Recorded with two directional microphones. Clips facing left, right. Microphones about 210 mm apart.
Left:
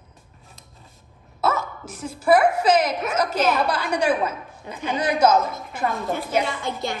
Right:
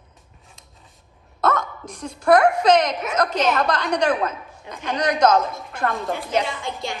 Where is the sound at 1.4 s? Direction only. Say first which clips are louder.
Right 2 dB; 5° left (ahead or behind).